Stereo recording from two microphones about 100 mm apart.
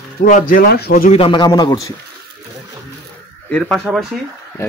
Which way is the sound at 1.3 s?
45° left (ahead or behind).